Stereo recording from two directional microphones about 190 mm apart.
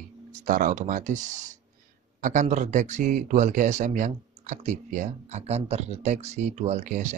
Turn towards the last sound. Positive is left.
turn(degrees=-40)  # may be behind; listen again after turning